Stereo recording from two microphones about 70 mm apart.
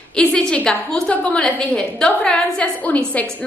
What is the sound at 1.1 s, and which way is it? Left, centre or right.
A woman's voice, centre.